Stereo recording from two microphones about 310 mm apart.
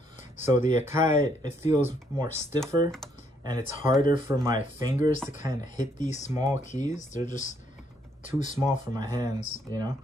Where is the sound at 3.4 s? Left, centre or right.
Centre.